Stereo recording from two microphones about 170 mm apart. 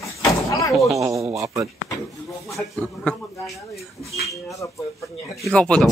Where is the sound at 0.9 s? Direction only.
20° right (ahead or behind).